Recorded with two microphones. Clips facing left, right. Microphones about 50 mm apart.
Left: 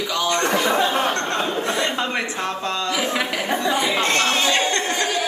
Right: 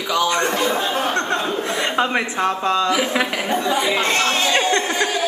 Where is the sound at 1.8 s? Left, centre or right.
Centre.